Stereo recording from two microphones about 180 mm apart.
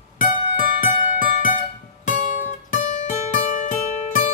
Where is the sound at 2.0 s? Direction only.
45° left (ahead or behind).